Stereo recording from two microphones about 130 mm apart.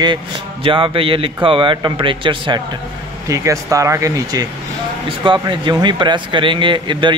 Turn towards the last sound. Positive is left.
turn(degrees=-40)  # may be behind; listen again after turning